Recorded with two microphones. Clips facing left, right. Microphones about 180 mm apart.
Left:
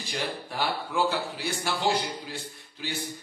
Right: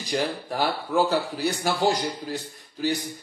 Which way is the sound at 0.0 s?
40° right (ahead or behind).